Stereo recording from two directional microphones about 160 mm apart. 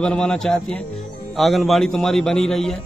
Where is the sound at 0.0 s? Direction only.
5° left (ahead or behind).